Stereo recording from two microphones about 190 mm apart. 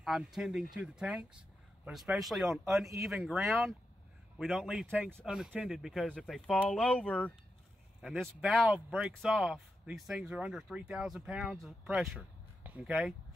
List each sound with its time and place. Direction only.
0.0 s speech: centre (ahead or behind)